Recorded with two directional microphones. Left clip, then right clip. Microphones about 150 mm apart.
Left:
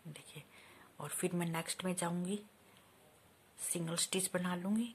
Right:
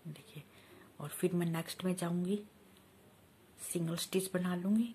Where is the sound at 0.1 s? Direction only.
20° left (ahead or behind).